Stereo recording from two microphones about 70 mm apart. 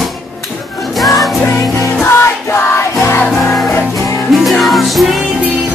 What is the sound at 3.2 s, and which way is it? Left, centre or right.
Music, centre.